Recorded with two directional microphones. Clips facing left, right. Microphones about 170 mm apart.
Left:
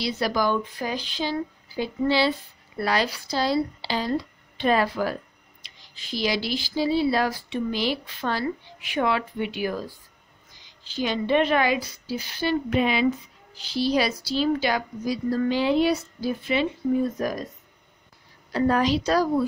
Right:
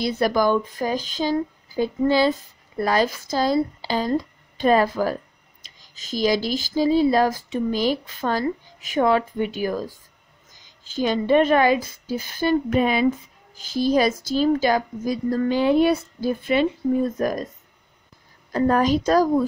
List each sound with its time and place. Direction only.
0.0 s speech: 50° right (ahead or behind)
18.5 s speech: 45° right (ahead or behind)